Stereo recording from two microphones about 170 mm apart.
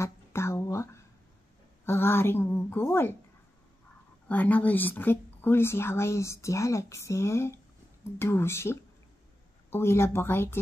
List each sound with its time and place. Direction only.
0.0 s a sound: 15° left (ahead or behind)
1.9 s a woman's voice: 15° left (ahead or behind)
4.3 s a woman's voice: 10° left (ahead or behind)